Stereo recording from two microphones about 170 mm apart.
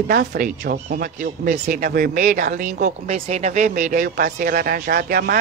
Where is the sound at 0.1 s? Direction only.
65° right (ahead or behind).